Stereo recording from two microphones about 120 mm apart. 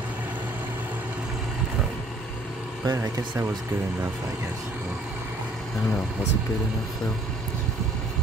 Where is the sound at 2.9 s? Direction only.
30° right (ahead or behind).